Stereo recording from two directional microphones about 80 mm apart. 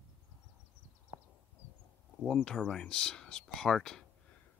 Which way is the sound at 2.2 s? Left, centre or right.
Centre.